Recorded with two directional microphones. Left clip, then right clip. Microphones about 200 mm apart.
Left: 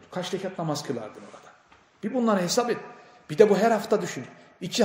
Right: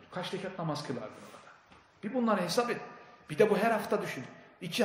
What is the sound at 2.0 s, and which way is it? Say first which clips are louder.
A man's voice: left 6 dB; 55° left (ahead or behind).